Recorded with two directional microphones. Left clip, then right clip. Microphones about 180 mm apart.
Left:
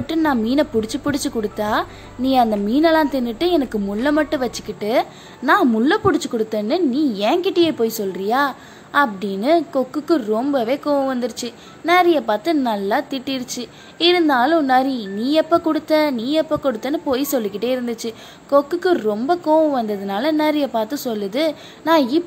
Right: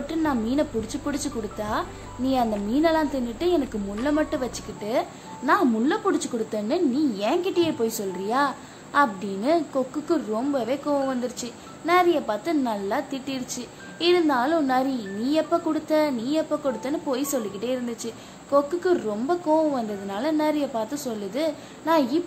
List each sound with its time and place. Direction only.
0.0 s a woman's voice: 35° left (ahead or behind)